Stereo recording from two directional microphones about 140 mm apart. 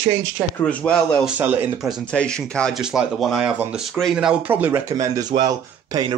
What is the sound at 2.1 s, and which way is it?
Speech, 5° left (ahead or behind).